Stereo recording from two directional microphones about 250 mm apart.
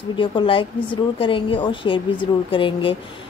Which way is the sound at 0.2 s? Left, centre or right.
Left.